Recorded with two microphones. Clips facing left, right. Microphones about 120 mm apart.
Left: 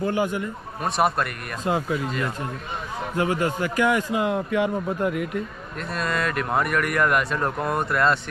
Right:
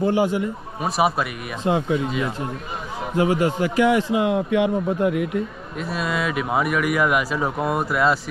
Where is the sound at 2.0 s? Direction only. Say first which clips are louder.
Right 3 dB; 5° right (ahead or behind).